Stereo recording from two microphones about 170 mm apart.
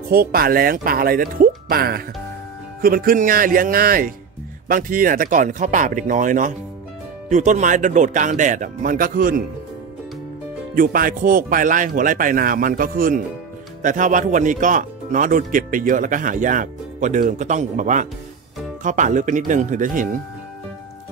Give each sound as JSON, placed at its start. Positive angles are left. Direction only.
{"t": 0.1, "sound": "speech", "side_deg": -60}
{"t": 10.7, "sound": "speech", "side_deg": -55}